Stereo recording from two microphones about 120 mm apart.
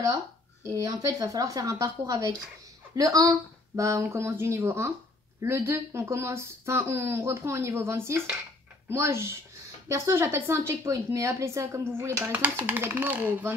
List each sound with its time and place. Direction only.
0.7 s a woman's voice: 25° right (ahead or behind)